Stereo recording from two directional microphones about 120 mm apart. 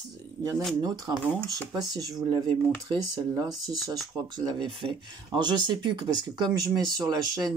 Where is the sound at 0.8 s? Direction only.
35° right (ahead or behind).